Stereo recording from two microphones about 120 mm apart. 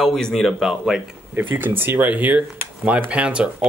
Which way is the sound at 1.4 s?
15° right (ahead or behind).